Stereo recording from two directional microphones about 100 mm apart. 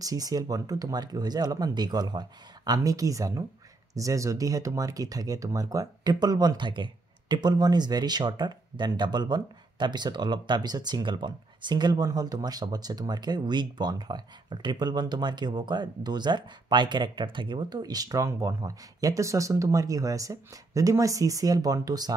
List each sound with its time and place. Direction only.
0.0 s speech: 35° right (ahead or behind)